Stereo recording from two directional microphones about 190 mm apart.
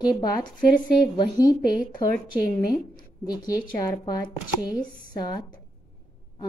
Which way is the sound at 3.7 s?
20° left (ahead or behind).